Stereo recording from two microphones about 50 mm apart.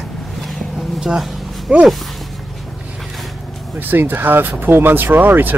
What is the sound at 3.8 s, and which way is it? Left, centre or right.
Speech, right.